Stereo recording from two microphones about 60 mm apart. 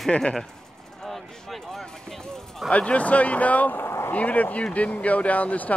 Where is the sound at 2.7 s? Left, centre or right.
Left.